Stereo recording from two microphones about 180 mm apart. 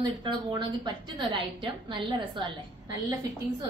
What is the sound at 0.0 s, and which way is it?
A woman's voice, 25° right (ahead or behind).